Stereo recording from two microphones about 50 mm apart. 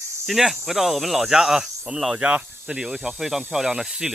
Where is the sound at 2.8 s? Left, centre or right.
Centre.